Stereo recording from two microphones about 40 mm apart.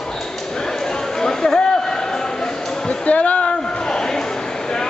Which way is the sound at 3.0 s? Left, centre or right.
Left.